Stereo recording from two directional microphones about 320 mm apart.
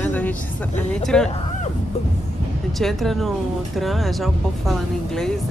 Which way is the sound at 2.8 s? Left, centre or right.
Centre.